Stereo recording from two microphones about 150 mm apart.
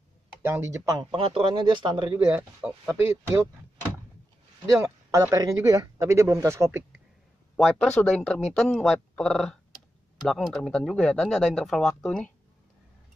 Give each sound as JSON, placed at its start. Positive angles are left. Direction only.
{"t": 0.4, "sound": "speech", "side_deg": -15}
{"t": 1.1, "sound": "speech", "side_deg": -35}
{"t": 2.3, "sound": "speech", "side_deg": -10}
{"t": 5.3, "sound": "speech", "side_deg": -20}
{"t": 7.5, "sound": "speech", "side_deg": 5}